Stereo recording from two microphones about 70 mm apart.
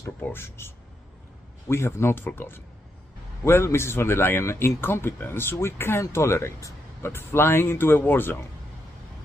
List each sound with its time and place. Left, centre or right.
0.2 s speech: left